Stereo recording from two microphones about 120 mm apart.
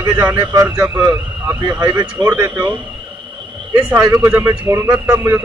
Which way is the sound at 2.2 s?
10° right (ahead or behind).